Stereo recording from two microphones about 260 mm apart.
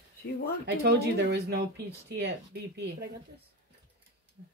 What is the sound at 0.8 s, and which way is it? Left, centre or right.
Speech, right.